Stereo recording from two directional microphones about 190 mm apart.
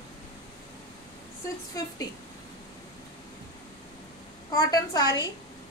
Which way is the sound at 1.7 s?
20° left (ahead or behind).